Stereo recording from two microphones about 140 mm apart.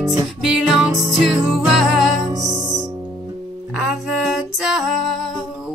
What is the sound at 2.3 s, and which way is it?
Music, 25° right (ahead or behind).